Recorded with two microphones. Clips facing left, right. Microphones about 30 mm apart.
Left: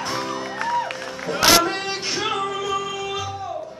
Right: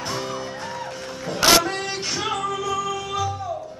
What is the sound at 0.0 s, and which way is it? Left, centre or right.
Music, centre.